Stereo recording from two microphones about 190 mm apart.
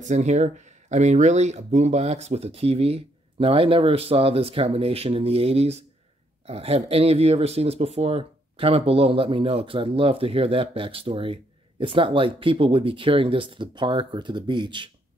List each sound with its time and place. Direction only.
0.0 s speech: 40° right (ahead or behind)